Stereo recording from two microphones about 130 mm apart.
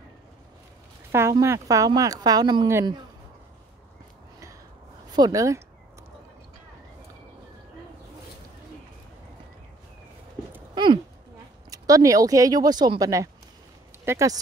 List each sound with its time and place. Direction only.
1.3 s speech: 25° right (ahead or behind)
5.1 s speech: 30° right (ahead or behind)
10.7 s a sound: 35° right (ahead or behind)
11.7 s speech: 25° right (ahead or behind)